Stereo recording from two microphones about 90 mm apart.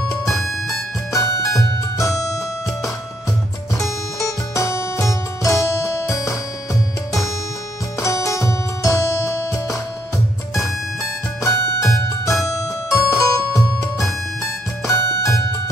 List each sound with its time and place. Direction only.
0.3 s music: centre (ahead or behind)
1.1 s music: 35° left (ahead or behind)
4.2 s music: 35° left (ahead or behind)
8.0 s music: 35° left (ahead or behind)
10.5 s music: centre (ahead or behind)
11.4 s music: 35° left (ahead or behind)